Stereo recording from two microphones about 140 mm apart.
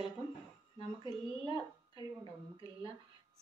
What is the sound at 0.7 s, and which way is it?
Speech, 30° left (ahead or behind).